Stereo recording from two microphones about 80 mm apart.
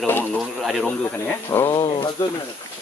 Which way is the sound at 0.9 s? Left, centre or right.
Left.